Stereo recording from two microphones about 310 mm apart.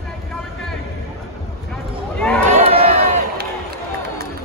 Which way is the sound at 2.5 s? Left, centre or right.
Centre.